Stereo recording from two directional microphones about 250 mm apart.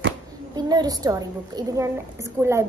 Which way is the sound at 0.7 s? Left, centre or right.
Centre.